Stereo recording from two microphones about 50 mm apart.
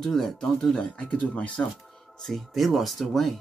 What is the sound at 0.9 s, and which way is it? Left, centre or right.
Speech, left.